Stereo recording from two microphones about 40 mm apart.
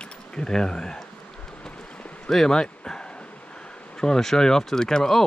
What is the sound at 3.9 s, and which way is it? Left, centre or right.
Speech, centre.